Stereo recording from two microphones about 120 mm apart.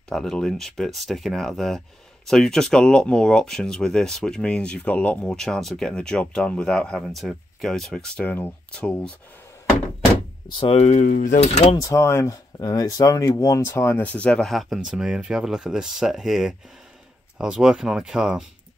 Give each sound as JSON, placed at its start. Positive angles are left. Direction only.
{"t": 0.1, "sound": "speech", "side_deg": 5}
{"t": 10.6, "sound": "speech", "side_deg": 60}
{"t": 11.8, "sound": "speech", "side_deg": 25}